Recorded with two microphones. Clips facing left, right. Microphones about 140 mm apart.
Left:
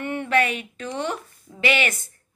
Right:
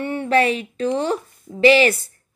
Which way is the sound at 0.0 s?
30° right (ahead or behind).